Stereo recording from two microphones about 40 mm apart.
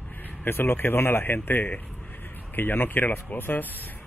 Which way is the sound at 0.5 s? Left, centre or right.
Left.